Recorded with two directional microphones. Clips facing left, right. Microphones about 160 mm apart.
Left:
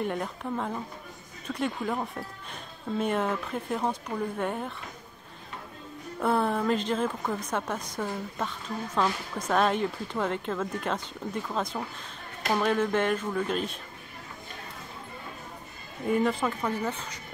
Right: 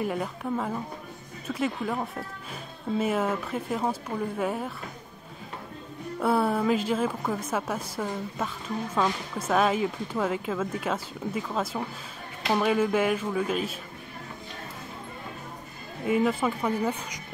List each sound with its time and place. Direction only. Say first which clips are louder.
0.0 s a woman's voice: right 1 dB; 5° right (ahead or behind)
6.1 s a woman's voice: right 2 dB; 5° right (ahead or behind)
16.1 s speech: right 1 dB; 5° right (ahead or behind)